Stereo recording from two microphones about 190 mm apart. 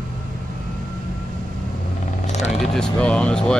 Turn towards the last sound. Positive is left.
turn(degrees=5)  # may be behind; listen again after turning